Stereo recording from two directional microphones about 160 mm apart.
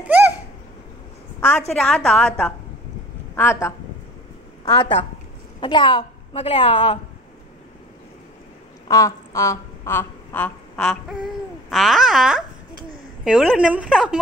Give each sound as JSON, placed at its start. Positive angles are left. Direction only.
{"t": 0.0, "sound": "a sound", "side_deg": -10}
{"t": 1.7, "sound": "a woman's voice", "side_deg": 5}
{"t": 3.3, "sound": "a woman's voice", "side_deg": 15}
{"t": 5.6, "sound": "a woman's voice", "side_deg": 30}
{"t": 8.8, "sound": "a woman's voice", "side_deg": 20}